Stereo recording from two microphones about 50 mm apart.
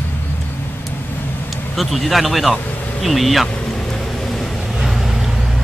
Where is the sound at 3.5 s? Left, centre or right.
Centre.